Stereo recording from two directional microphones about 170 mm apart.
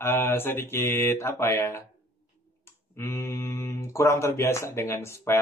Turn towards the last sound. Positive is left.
turn(degrees=15)  # may be behind; listen again after turning